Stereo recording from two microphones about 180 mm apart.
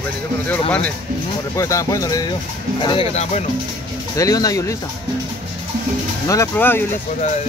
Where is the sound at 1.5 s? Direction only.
15° left (ahead or behind).